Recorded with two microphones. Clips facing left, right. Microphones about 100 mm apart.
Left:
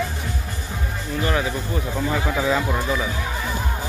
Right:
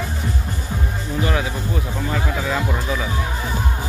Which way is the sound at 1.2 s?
5° right (ahead or behind).